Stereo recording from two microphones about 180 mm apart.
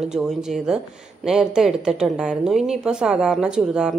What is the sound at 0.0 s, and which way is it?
A woman's voice, 5° right (ahead or behind).